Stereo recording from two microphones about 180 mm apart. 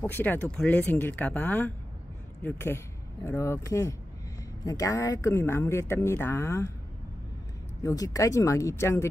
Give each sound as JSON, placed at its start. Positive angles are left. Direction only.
{"t": 0.0, "sound": "speech", "side_deg": 10}
{"t": 7.8, "sound": "speech", "side_deg": 20}